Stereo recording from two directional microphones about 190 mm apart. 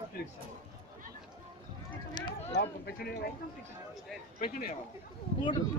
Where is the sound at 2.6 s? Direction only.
60° left (ahead or behind).